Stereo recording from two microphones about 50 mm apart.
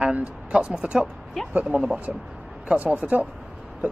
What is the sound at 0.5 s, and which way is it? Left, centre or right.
A man's voice, right.